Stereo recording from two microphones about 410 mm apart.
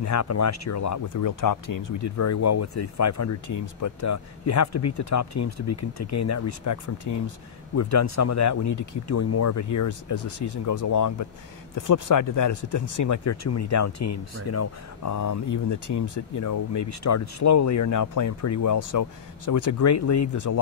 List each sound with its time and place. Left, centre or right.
0.0 s speech: left